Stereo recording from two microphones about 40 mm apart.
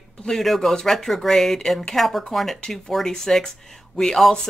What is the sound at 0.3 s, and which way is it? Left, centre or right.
Speech, centre.